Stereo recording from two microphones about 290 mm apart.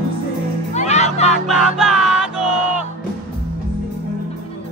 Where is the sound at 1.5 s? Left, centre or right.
Centre.